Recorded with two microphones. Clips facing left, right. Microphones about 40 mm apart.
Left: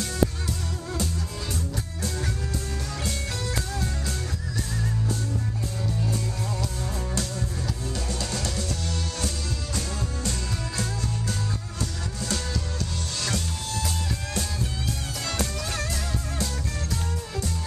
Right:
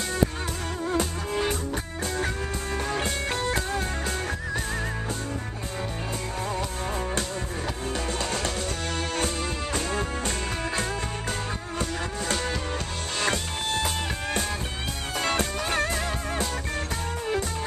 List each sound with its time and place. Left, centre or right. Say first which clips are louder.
0.8 s music: right 5 dB; right
3.0 s music: right 4 dB; right
7.9 s music: right 5 dB; right
9.8 s music: right 5 dB; right
13.2 s music: right 5 dB; right